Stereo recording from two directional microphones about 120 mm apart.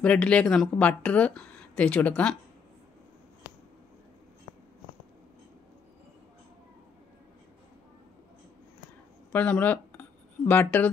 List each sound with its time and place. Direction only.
0.0 s speech: 10° left (ahead or behind)
9.3 s speech: 15° left (ahead or behind)